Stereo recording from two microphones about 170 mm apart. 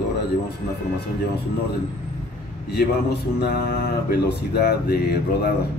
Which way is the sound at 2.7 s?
70° left (ahead or behind).